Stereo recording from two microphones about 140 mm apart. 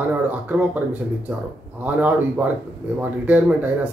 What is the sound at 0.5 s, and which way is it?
Speech, 10° right (ahead or behind).